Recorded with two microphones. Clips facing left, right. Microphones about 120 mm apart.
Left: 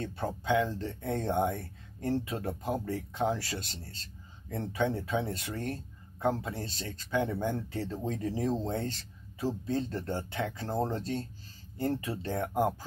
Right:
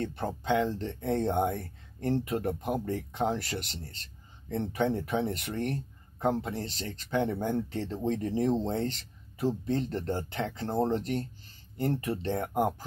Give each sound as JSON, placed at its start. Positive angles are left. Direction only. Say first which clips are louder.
{"t": 0.0, "sound": "speech", "louder": "right 2 dB", "side_deg": -20}